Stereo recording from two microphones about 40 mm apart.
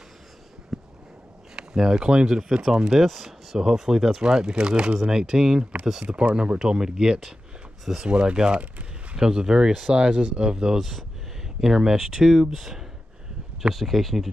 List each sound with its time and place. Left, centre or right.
0.7 s a sound: centre
1.5 s speech: centre
6.0 s speech: right
6.6 s speech: centre
8.1 s speech: right
10.8 s speech: centre
11.6 s speech: centre